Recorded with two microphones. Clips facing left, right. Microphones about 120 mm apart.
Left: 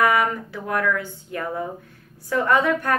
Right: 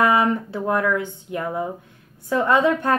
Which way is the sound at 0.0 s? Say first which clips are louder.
Right 2 dB; 25° right (ahead or behind).